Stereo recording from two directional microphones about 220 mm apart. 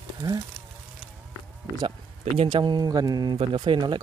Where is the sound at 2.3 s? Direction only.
20° right (ahead or behind).